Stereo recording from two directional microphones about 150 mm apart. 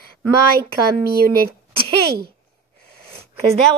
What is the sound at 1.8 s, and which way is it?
Speech, 90° right.